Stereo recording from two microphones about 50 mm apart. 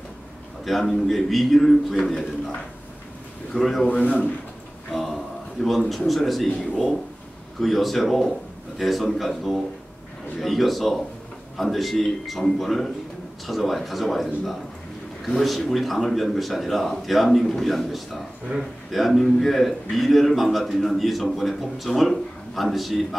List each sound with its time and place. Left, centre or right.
0.7 s a man's voice: centre
3.5 s a man's voice: centre
3.9 s a man's voice: left
4.9 s a man's voice: centre
18.5 s a man's voice: right
18.9 s a man's voice: centre